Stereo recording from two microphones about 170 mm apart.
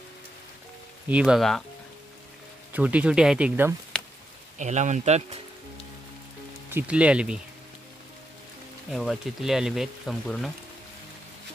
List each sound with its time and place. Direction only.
1.0 s speech: 5° right (ahead or behind)
2.7 s speech: 10° right (ahead or behind)
4.6 s speech: 45° right (ahead or behind)
6.7 s speech: 10° right (ahead or behind)
8.9 s speech: centre (ahead or behind)